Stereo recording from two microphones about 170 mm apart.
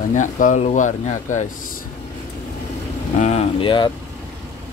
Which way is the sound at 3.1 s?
40° left (ahead or behind).